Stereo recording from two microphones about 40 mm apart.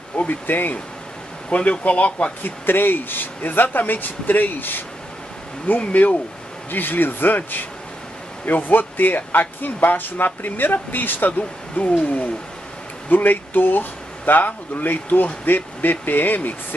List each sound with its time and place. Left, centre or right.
0.1 s speech: left
1.5 s speech: left
2.4 s speech: left
5.8 s speech: left
6.7 s speech: left
13.1 s speech: left
15.4 s speech: left